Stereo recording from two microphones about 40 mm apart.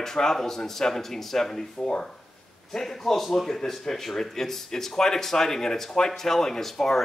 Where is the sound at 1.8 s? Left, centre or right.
Left.